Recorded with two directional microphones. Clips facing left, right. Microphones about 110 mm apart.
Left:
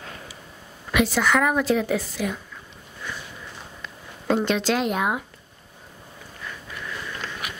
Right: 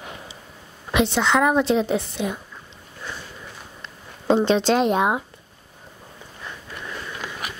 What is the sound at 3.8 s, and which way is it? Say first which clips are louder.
Speech: left 1 dB; 25° right (ahead or behind).